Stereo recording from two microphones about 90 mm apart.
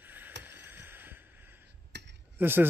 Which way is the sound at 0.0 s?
20° right (ahead or behind).